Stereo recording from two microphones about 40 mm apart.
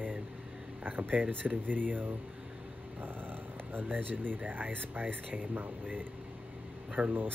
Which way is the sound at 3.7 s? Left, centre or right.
Right.